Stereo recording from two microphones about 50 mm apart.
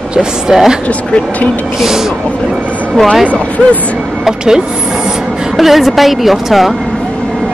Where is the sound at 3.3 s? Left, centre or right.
Left.